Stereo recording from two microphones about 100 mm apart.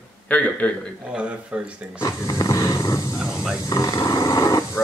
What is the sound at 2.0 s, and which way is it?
Dog, 35° left (ahead or behind).